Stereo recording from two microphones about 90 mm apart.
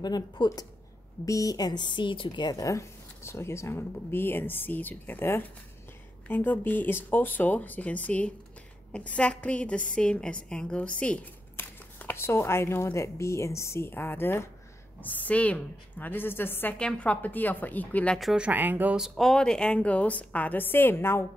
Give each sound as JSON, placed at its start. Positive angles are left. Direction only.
{"t": 0.0, "sound": "speech", "side_deg": 50}
{"t": 1.2, "sound": "a woman's voice", "side_deg": 40}
{"t": 2.5, "sound": "a woman's voice", "side_deg": 35}
{"t": 16.7, "sound": "a woman's voice", "side_deg": 10}
{"t": 18.3, "sound": "speech", "side_deg": -15}
{"t": 18.9, "sound": "a woman's voice", "side_deg": 0}